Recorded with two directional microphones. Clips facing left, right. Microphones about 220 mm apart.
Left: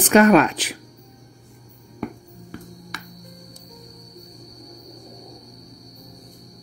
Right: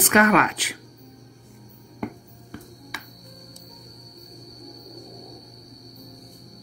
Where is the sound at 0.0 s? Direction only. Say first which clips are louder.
Left 5 dB; 30° left (ahead or behind).